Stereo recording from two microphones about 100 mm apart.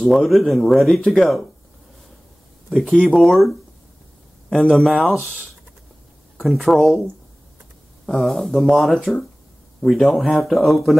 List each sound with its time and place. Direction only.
0.0 s speech: centre (ahead or behind)
2.7 s speech: 10° left (ahead or behind)
6.3 s speech: centre (ahead or behind)
8.1 s speech: 5° left (ahead or behind)